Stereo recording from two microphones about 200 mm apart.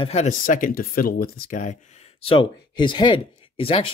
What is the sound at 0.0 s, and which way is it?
Speech, 35° left (ahead or behind).